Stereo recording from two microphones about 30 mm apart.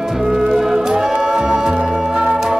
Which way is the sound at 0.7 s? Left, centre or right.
Centre.